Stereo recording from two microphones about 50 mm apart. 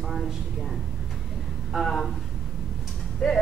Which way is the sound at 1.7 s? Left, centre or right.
Centre.